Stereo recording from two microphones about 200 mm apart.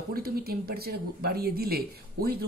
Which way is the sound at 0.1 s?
50° right (ahead or behind).